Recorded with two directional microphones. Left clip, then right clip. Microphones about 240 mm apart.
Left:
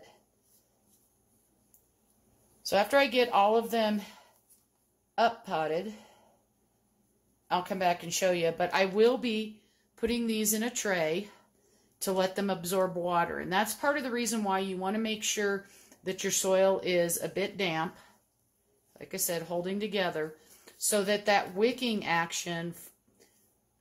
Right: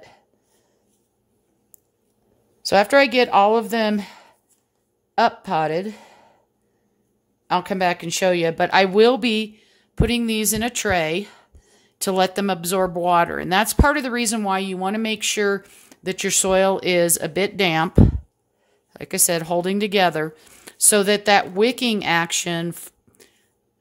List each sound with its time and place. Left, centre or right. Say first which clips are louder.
2.6 s a woman's voice: right 10 dB; right
7.4 s speech: right 8 dB; right
18.9 s speech: right 12 dB; right